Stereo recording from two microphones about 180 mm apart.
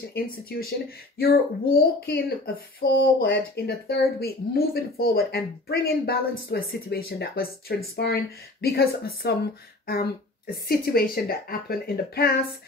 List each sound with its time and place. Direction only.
0.1 s speech: 60° left (ahead or behind)